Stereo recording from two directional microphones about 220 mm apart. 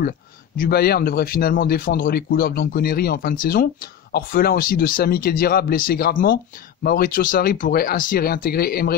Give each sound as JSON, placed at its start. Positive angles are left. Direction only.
{"t": 0.6, "sound": "a man's voice", "side_deg": 45}